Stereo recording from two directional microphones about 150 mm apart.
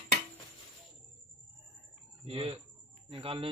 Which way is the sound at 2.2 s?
35° right (ahead or behind).